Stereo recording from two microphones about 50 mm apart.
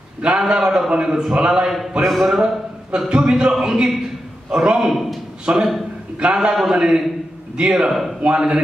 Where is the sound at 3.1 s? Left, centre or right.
Centre.